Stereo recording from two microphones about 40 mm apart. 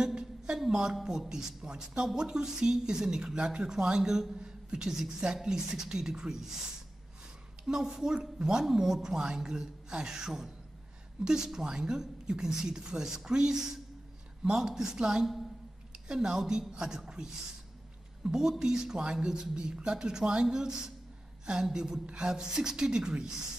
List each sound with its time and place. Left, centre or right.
0.0 s a sound: centre
0.7 s speech: centre
7.6 s a man's voice: centre